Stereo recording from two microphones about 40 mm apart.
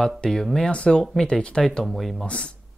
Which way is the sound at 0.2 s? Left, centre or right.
Centre.